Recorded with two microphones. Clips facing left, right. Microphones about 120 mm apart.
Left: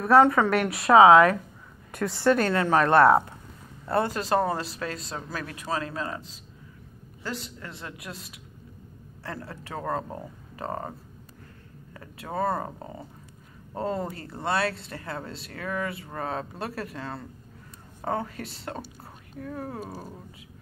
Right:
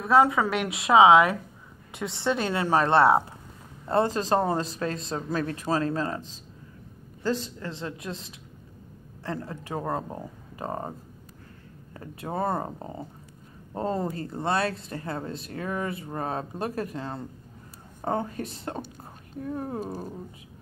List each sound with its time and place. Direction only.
0.0 s a woman's voice: 5° right (ahead or behind)
2.7 s speech: 30° right (ahead or behind)
7.6 s speech: 30° right (ahead or behind)
11.9 s speech: 30° right (ahead or behind)